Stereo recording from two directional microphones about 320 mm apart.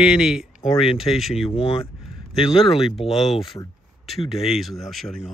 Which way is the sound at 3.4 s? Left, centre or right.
Centre.